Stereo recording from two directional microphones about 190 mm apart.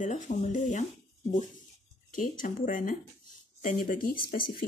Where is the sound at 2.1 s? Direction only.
45° left (ahead or behind).